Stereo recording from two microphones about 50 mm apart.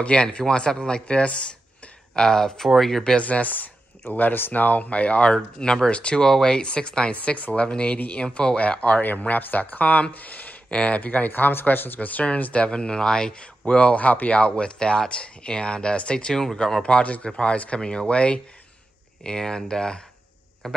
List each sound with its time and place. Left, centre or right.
0.0 s speech: left
3.2 s speech: left
7.2 s speech: left
12.6 s speech: centre